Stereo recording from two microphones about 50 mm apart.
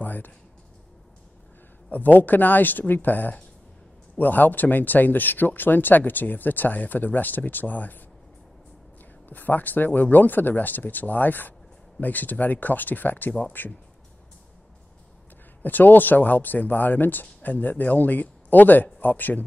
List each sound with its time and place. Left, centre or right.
0.0 s a sound: left
1.9 s speech: left
9.3 s speech: left
15.6 s speech: left